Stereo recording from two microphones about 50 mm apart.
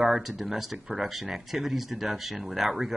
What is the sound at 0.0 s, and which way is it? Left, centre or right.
Speech, centre.